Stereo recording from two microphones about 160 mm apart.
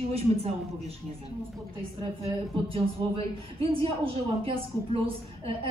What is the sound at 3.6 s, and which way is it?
A woman's voice, 35° right (ahead or behind).